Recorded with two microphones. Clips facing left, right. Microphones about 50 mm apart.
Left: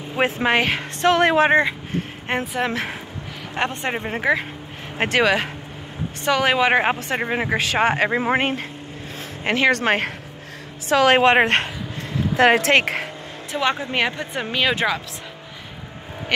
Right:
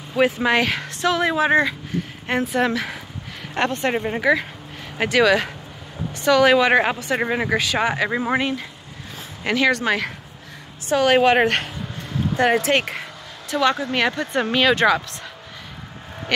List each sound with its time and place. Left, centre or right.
0.1 s speech: left
1.0 s a woman's voice: left
1.5 s speech: left
3.6 s speech: centre
4.9 s speech: left
7.2 s speech: centre
7.5 s speech: left
9.4 s speech: left
9.7 s a woman's voice: left
13.5 s speech: left
16.3 s speech: centre